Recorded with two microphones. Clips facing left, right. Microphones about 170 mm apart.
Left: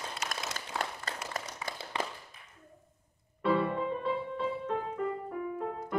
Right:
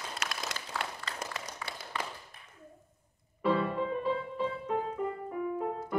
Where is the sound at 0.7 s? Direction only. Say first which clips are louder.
Left 2 dB; 20° left (ahead or behind).